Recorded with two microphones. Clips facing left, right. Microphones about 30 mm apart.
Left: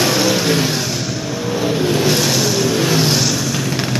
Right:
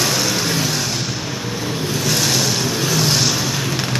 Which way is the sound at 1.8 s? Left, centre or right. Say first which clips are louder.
Left 6 dB; left.